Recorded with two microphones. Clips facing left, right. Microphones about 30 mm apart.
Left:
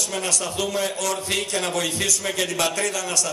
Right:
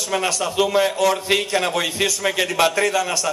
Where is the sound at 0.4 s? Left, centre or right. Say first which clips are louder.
Right 7 dB; right.